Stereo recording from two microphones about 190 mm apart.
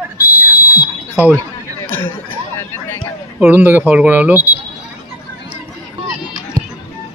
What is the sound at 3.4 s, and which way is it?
Speech, 10° right (ahead or behind).